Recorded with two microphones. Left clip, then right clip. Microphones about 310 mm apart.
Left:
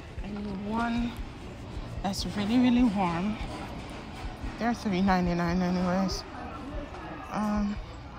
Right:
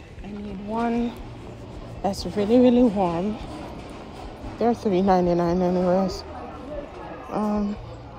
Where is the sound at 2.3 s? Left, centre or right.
Centre.